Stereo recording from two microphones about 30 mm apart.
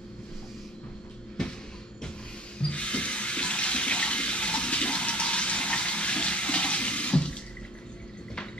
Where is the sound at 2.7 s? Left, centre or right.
Left.